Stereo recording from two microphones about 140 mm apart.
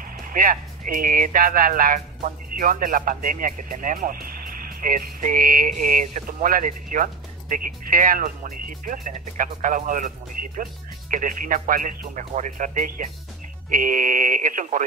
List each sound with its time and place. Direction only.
0.2 s speech: 85° right; by 14.9 s 65° right (ahead or behind)